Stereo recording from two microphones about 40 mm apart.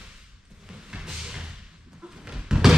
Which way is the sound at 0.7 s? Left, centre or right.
Centre.